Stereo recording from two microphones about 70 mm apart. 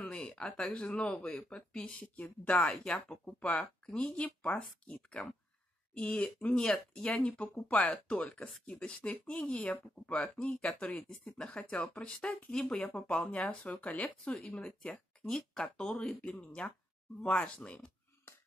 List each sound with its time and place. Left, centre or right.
0.0 s speech: centre